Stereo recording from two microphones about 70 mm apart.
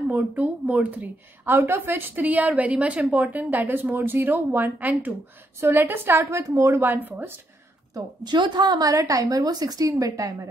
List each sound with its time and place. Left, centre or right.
0.1 s a woman's voice: right
1.4 s a woman's voice: right
7.9 s a woman's voice: right